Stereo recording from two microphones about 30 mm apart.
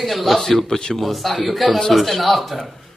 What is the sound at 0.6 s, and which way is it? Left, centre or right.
Speech, left.